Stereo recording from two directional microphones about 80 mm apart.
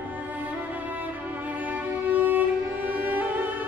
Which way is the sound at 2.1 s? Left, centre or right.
Right.